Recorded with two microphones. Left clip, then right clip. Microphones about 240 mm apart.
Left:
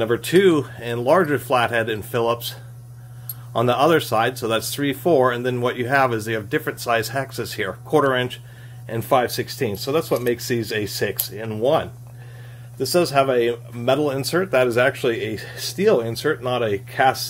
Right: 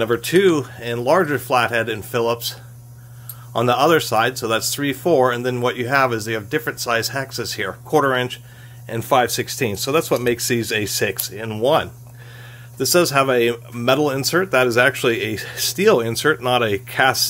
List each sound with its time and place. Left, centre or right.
0.0 s speech: centre
12.7 s speech: right